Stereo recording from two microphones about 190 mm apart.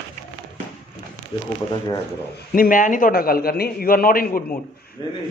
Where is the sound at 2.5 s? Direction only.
45° left (ahead or behind).